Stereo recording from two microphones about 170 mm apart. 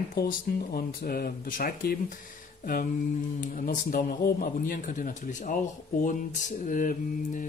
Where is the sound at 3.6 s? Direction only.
55° left (ahead or behind).